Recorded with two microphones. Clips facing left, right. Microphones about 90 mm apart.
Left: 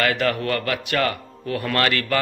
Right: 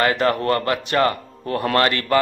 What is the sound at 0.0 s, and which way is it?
A man's voice, 30° right (ahead or behind).